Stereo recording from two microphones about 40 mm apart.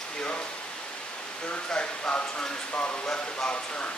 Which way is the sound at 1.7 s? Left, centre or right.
Left.